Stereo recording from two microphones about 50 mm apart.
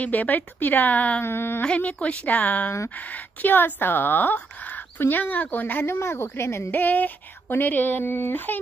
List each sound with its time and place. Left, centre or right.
0.0 s speech: left
1.2 s speech: left
1.6 s speech: left
5.9 s a woman's voice: left
6.7 s speech: left